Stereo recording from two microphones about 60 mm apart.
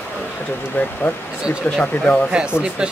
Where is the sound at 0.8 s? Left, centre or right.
Left.